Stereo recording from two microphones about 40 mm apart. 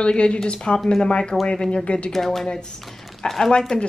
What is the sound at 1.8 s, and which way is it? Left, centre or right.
Speech, left.